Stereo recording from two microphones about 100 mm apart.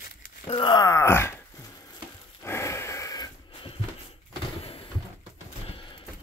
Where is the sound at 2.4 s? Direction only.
25° left (ahead or behind).